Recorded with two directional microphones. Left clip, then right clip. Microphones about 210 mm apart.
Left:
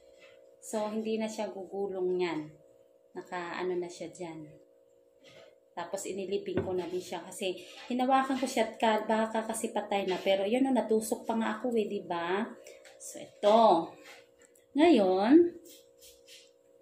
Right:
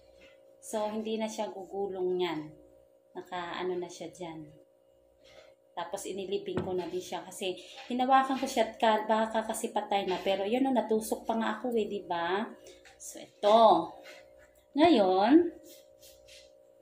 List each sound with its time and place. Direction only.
0.7 s speech: centre (ahead or behind)
5.8 s speech: 5° left (ahead or behind)
14.7 s speech: 15° left (ahead or behind)